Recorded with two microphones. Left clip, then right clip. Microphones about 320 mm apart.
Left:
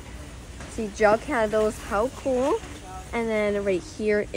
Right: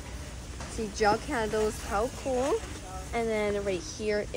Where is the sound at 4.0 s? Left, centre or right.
Left.